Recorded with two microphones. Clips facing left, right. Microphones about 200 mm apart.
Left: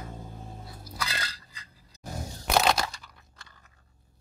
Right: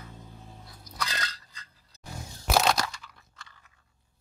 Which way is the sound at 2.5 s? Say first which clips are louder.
Even; centre (ahead or behind).